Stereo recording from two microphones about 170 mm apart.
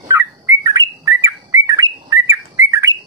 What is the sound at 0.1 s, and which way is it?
Bird, 15° right (ahead or behind).